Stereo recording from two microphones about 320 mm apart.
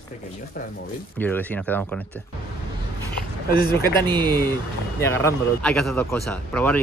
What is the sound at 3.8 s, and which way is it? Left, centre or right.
A man's voice, centre.